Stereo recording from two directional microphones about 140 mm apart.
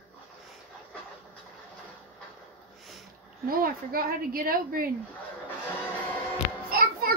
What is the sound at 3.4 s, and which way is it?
A woman's voice, 90° right.